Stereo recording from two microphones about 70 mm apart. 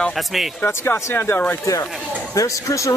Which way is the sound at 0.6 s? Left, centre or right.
Left.